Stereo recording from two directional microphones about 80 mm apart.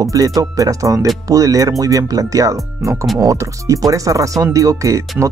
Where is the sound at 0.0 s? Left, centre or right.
Right.